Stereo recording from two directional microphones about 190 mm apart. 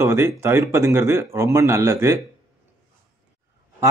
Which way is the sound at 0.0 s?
15° right (ahead or behind).